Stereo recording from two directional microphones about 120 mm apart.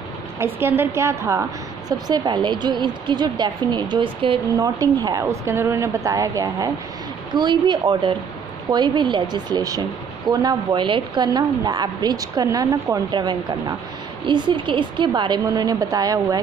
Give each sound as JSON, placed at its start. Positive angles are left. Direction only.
{"t": 0.4, "sound": "a woman's voice", "side_deg": -20}
{"t": 1.9, "sound": "a woman's voice", "side_deg": -35}
{"t": 4.6, "sound": "a woman's voice", "side_deg": -30}
{"t": 7.3, "sound": "a woman's voice", "side_deg": -40}